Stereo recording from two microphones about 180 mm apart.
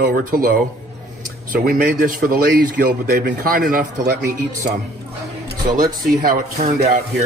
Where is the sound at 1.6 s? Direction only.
50° right (ahead or behind).